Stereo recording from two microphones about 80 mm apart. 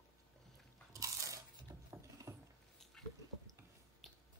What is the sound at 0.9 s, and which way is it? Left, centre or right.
Crunch, right.